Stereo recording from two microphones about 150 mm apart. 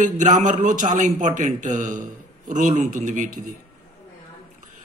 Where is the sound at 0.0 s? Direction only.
55° right (ahead or behind).